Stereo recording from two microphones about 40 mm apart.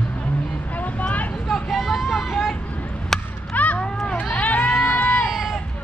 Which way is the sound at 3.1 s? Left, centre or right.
Centre.